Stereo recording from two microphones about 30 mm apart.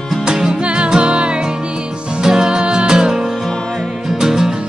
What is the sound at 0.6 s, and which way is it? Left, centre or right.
Music, right.